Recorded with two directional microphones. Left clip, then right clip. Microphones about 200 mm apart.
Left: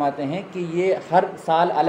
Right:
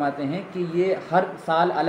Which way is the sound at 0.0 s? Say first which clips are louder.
Left 2 dB; 15° left (ahead or behind).